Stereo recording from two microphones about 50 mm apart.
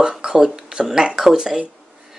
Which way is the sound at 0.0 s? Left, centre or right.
Centre.